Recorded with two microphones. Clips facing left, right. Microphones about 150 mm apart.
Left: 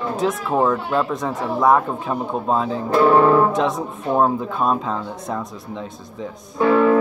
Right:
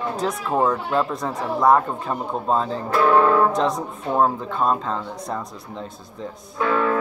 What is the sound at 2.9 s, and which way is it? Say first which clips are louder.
Speech: left 3 dB; 25° left (ahead or behind).